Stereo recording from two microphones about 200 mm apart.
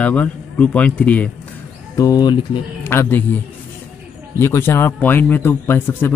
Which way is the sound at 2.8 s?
10° left (ahead or behind).